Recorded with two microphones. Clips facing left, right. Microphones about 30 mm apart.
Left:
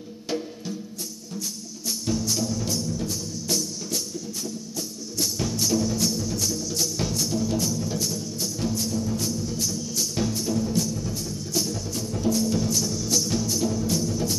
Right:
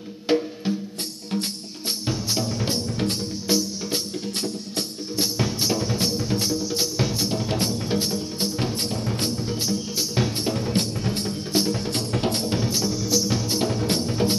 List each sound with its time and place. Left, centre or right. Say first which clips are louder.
0.3 s music: right 8 dB; right
1.3 s music: right 7 dB; right
2.0 s music: left 1 dB; right
5.1 s drum: right 3 dB; right
13.5 s music: right 2 dB; right